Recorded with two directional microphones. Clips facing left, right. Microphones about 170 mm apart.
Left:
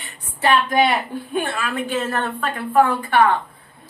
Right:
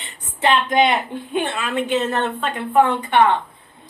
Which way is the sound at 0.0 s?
20° right (ahead or behind).